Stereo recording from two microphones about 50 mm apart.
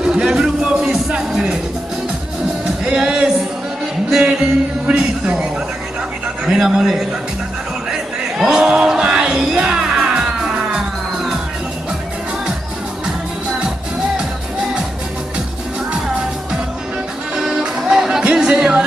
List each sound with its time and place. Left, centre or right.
0.0 s music: centre
2.6 s music: centre
4.3 s music: centre
6.4 s a man's voice: centre
7.9 s a sound: centre
17.4 s music: centre